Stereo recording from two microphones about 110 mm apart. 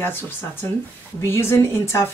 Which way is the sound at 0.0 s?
20° left (ahead or behind).